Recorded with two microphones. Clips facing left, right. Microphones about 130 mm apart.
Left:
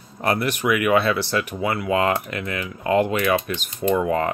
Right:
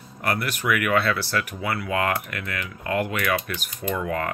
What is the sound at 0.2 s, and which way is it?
Speech, 25° left (ahead or behind).